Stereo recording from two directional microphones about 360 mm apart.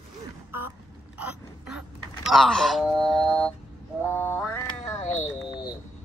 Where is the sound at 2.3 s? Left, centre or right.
Centre.